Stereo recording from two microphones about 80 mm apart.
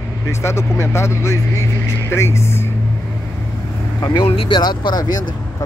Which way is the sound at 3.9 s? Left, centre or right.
Left.